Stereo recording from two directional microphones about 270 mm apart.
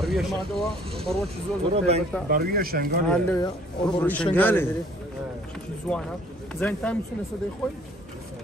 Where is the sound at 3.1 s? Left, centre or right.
Centre.